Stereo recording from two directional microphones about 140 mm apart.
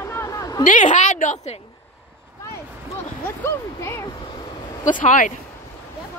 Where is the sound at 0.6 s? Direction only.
60° left (ahead or behind).